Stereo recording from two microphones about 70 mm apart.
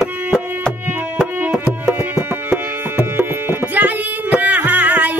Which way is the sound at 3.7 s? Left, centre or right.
Right.